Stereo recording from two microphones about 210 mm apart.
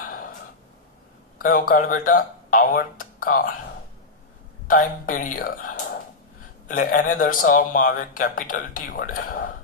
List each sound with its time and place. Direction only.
0.0 s a sound: 40° left (ahead or behind)
1.4 s speech: 40° left (ahead or behind)
4.6 s a man's voice: 40° left (ahead or behind)